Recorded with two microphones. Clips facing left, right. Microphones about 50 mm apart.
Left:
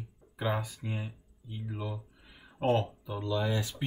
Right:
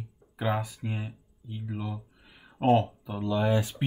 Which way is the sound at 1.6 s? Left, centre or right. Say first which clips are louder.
Right 2 dB; centre.